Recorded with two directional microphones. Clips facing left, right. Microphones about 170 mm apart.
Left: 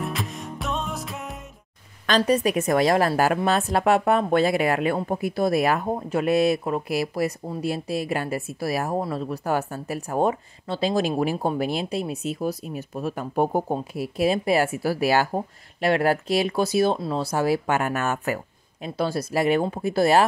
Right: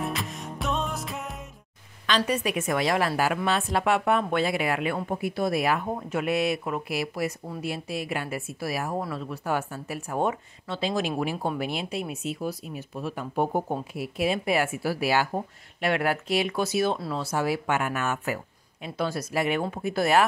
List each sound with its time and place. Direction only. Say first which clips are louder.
0.0 s music: left 1 dB; centre (ahead or behind)
2.0 s speech: left 5 dB; 40° left (ahead or behind)
7.4 s speech: left 5 dB; 25° left (ahead or behind)
7.7 s speech: left 5 dB; 35° left (ahead or behind)
18.9 s speech: left 4 dB; 35° left (ahead or behind)